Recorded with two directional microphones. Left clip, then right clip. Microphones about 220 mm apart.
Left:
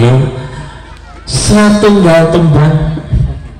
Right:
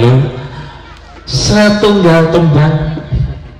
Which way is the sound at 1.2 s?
40° left (ahead or behind).